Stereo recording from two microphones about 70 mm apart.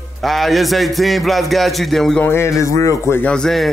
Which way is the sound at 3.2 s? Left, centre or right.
Centre.